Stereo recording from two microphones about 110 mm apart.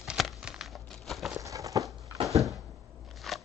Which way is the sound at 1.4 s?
30° right (ahead or behind).